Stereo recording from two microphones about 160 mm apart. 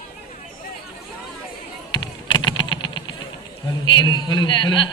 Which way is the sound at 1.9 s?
30° left (ahead or behind).